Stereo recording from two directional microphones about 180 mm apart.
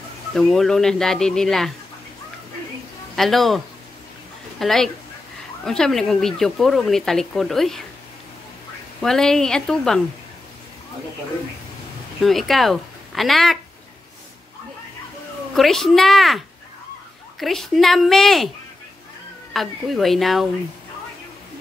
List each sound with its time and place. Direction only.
0.3 s speech: centre (ahead or behind)
3.2 s speech: centre (ahead or behind)
9.0 s speech: centre (ahead or behind)
12.2 s speech: centre (ahead or behind)
15.5 s speech: centre (ahead or behind)
19.5 s speech: centre (ahead or behind)